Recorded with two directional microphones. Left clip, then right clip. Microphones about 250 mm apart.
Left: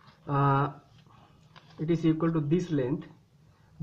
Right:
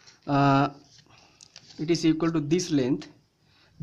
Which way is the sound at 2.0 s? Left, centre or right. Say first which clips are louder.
Right 3 dB; right.